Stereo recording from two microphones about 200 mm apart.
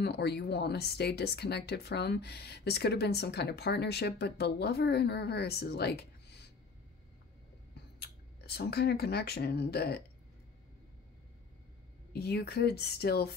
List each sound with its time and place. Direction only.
0.0 s speech: 55° left (ahead or behind)
7.7 s speech: 55° left (ahead or behind)
12.1 s speech: 55° left (ahead or behind)